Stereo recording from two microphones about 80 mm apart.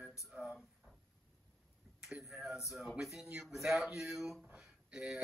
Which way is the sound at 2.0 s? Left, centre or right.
Centre.